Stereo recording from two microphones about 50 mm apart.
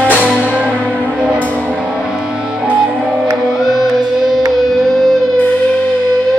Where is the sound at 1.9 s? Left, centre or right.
Centre.